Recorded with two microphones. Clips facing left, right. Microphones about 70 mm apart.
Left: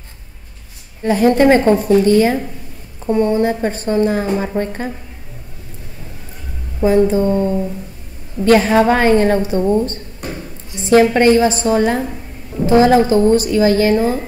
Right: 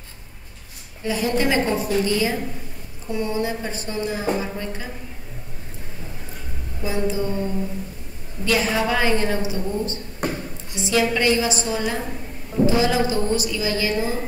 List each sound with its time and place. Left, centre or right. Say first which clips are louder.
1.0 s a woman's voice: left 10 dB; left
6.8 s a woman's voice: left 11 dB; left